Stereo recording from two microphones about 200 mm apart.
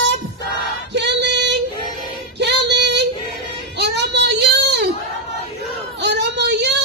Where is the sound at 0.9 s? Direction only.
60° right (ahead or behind).